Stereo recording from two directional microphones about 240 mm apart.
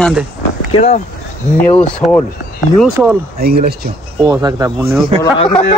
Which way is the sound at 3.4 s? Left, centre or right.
Right.